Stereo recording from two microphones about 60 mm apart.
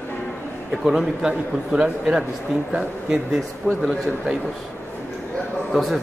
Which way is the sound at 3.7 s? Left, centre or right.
Right.